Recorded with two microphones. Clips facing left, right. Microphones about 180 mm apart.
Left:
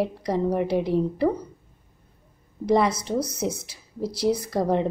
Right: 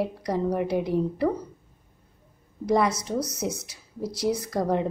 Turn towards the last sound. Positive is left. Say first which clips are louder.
# left 2 dB
turn(degrees=25)  # may be behind; listen again after turning